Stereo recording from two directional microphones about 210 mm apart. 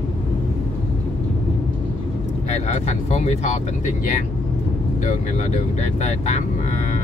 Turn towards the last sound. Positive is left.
turn(degrees=35)  # may be behind; listen again after turning